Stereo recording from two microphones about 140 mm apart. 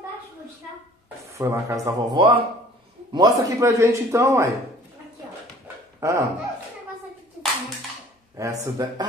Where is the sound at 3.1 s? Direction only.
25° right (ahead or behind).